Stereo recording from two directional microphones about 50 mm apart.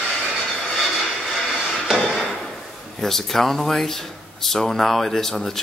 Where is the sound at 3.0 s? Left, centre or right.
Centre.